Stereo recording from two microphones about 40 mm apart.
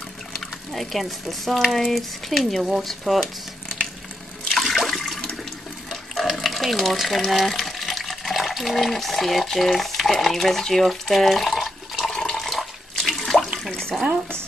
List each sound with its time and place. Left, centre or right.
0.7 s speech: centre
1.7 s a sound: centre
2.0 s speech: centre
4.5 s toilet flush: centre
5.9 s water: centre
7.2 s speech: centre
12.1 s toilet flush: centre
13.2 s water: centre
13.7 s a sound: centre